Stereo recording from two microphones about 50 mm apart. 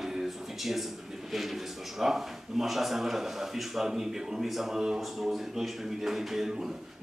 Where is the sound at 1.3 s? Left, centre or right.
Centre.